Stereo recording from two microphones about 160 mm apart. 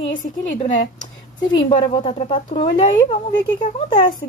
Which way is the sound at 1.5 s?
30° left (ahead or behind).